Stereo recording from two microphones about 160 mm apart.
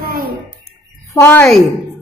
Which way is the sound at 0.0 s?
65° right (ahead or behind).